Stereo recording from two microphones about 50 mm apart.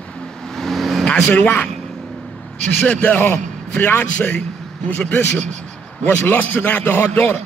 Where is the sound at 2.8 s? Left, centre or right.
Left.